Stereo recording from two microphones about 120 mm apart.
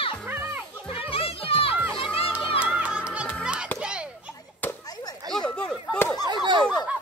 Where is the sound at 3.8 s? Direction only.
10° right (ahead or behind).